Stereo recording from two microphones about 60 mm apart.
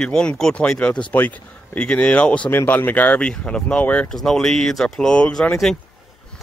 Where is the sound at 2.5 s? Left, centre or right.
Left.